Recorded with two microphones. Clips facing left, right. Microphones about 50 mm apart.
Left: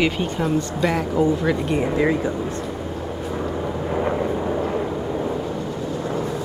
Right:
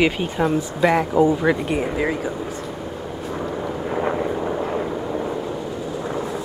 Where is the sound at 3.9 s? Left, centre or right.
Centre.